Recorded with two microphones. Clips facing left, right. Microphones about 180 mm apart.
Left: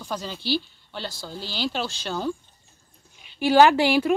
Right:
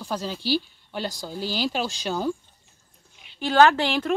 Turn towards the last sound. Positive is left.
turn(degrees=10)  # may be behind; listen again after turning